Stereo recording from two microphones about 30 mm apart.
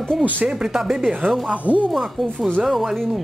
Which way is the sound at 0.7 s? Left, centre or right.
Centre.